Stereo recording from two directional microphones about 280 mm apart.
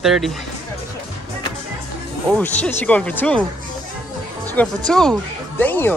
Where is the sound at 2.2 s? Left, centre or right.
Centre.